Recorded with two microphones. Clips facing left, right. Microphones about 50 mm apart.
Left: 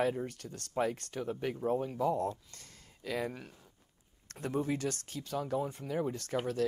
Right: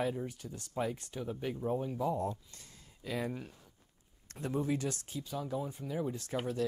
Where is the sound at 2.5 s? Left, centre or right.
Left.